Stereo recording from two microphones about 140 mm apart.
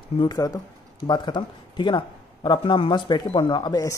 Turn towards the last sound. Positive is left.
turn(degrees=30)  # may be behind; listen again after turning